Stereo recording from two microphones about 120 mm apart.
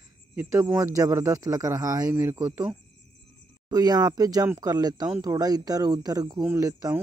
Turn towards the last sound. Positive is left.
turn(degrees=-25)  # may be behind; listen again after turning